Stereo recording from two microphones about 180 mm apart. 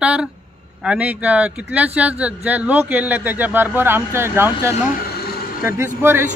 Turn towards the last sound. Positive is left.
turn(degrees=-15)  # may be behind; listen again after turning